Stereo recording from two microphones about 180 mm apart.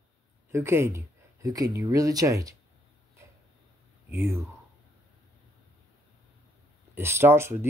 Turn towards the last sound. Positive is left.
turn(degrees=-15)  # may be behind; listen again after turning